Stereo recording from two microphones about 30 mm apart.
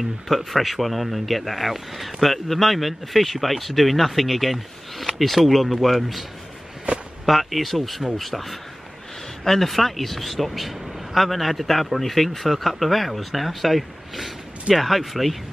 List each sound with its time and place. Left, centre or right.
0.5 s speech: centre
7.2 s speech: centre